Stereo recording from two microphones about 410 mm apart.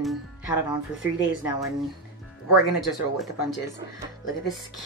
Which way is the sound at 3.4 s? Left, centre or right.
Left.